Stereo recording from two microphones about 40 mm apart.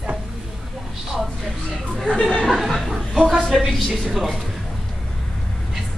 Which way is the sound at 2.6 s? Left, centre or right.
Centre.